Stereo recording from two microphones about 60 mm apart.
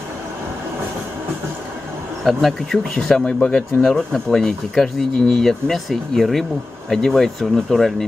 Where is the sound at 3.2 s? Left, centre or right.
Centre.